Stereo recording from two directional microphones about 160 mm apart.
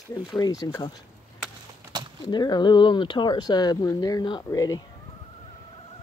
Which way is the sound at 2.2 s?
25° left (ahead or behind).